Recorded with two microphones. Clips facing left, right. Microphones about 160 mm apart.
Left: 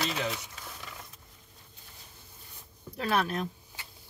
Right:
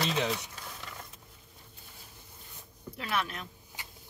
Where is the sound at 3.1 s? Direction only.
35° left (ahead or behind).